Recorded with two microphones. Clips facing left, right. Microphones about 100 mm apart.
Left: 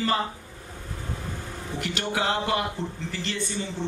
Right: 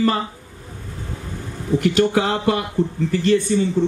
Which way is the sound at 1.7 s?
45° right (ahead or behind).